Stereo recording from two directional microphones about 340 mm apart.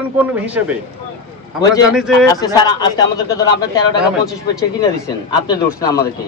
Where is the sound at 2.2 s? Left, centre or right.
Centre.